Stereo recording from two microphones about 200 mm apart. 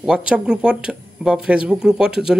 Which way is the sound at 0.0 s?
5° right (ahead or behind).